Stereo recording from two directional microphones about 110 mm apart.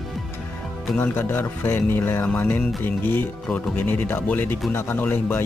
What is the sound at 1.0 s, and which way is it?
Speech, 20° left (ahead or behind).